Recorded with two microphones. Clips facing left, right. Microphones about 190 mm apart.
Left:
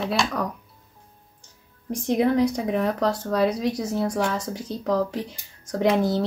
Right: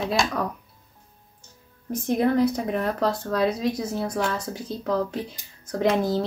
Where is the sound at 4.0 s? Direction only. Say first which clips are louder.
Left 4 dB; 10° left (ahead or behind).